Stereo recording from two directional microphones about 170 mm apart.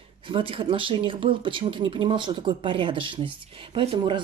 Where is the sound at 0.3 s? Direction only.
30° right (ahead or behind).